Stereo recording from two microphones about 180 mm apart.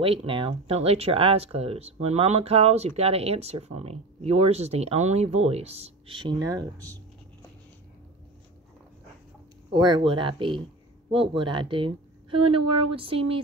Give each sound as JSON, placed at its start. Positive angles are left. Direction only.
{"t": 0.0, "sound": "speech", "side_deg": -30}
{"t": 9.7, "sound": "a woman's voice", "side_deg": -25}